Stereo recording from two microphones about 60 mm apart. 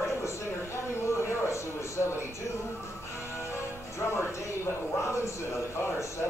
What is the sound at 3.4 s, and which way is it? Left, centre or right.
Speech, left.